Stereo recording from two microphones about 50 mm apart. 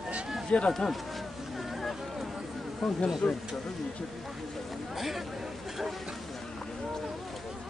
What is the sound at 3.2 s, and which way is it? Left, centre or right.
Speech, left.